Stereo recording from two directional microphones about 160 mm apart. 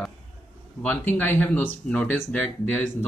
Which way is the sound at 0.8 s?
10° left (ahead or behind).